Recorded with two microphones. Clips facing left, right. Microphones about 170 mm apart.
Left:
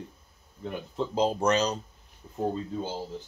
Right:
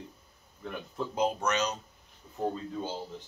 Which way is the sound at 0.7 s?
30° left (ahead or behind).